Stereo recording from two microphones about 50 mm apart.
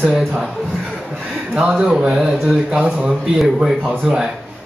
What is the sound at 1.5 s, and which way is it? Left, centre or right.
Speech, centre.